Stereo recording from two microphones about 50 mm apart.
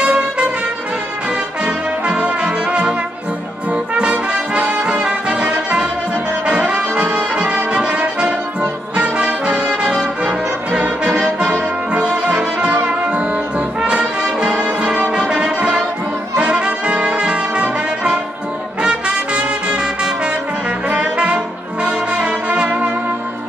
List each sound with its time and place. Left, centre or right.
0.0 s brass instrument: right
1.6 s brass instrument: right
13.7 s music: centre
16.3 s brass instrument: right
20.9 s music: right